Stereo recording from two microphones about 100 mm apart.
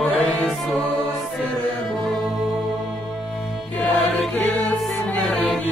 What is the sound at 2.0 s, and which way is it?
Music, centre (ahead or behind).